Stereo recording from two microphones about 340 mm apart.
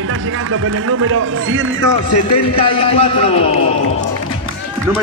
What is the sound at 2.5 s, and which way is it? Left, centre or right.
A man's voice, centre.